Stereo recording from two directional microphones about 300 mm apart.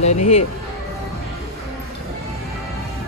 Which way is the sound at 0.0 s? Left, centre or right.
Left.